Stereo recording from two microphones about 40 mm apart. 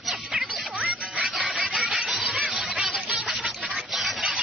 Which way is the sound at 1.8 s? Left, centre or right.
Centre.